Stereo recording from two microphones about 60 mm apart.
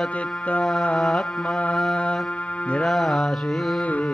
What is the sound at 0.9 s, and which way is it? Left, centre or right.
Music, centre.